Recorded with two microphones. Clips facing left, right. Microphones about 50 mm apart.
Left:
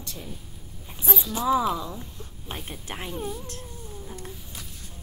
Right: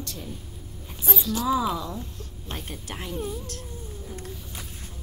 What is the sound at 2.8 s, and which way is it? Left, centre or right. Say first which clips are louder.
Speech: left 1 dB; left.